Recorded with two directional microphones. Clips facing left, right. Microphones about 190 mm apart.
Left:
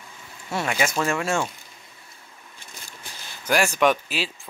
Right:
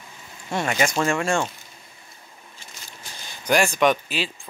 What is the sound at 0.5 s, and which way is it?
Speech, 5° left (ahead or behind).